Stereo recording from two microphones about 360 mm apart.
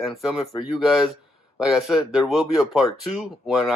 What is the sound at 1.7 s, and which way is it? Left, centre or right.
Speech, centre.